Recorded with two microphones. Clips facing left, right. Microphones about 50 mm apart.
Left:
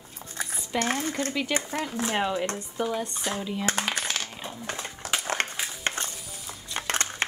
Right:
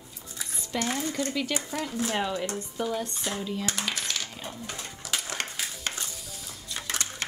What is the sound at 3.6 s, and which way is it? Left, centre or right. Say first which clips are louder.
Speech: left 4 dB; left.